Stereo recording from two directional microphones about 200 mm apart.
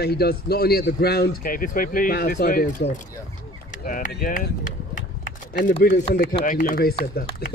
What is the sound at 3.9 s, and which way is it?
Speech, 40° left (ahead or behind).